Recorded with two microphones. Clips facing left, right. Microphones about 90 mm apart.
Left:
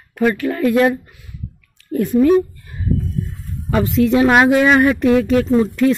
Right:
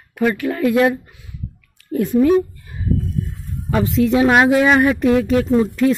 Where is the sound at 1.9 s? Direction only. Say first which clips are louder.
Left 1 dB; 15° right (ahead or behind).